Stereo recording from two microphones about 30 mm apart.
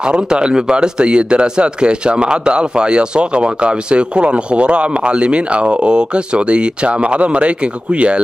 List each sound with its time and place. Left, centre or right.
0.3 s speech: right